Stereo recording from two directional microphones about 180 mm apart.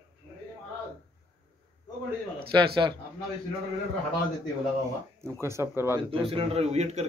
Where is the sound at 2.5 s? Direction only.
25° right (ahead or behind).